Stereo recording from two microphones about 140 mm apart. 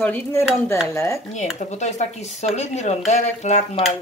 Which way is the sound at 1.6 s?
55° left (ahead or behind).